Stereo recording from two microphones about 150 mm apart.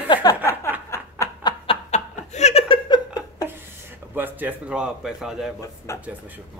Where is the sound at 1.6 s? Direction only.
50° left (ahead or behind).